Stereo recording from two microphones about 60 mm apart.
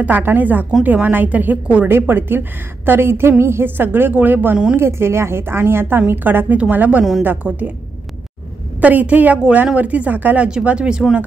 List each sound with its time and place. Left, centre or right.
0.0 s a woman's voice: right
1.9 s a woman's voice: right
4.7 s a woman's voice: right
8.8 s a woman's voice: right